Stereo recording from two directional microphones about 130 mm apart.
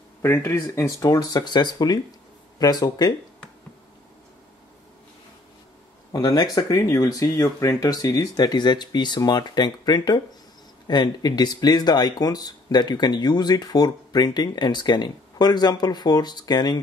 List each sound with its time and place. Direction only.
0.2 s speech: 20° left (ahead or behind)
6.1 s speech: 30° left (ahead or behind)